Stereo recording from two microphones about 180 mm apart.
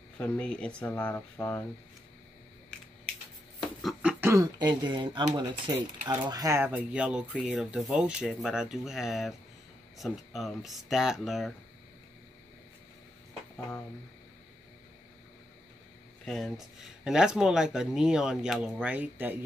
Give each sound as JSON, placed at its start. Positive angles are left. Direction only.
{"t": 0.2, "sound": "speech", "side_deg": 5}
{"t": 3.8, "sound": "a sound", "side_deg": 0}
{"t": 4.2, "sound": "speech", "side_deg": -15}
{"t": 16.3, "sound": "speech", "side_deg": 0}